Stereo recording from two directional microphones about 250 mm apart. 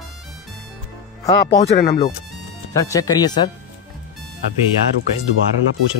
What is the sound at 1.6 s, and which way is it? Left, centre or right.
Speech, left.